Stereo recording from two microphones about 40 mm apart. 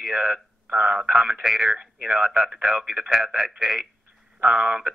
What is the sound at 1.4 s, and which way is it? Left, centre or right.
A man's voice, centre.